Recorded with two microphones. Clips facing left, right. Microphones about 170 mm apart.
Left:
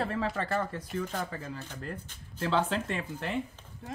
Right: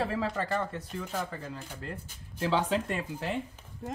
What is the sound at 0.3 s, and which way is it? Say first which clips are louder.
Speech: even; 5° left (ahead or behind).